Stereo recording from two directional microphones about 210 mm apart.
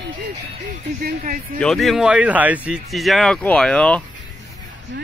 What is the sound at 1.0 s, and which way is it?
Speech, 45° right (ahead or behind).